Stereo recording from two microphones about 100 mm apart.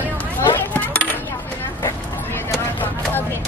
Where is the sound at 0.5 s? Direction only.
15° left (ahead or behind).